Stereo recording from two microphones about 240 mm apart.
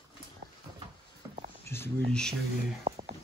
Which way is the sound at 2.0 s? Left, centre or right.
Centre.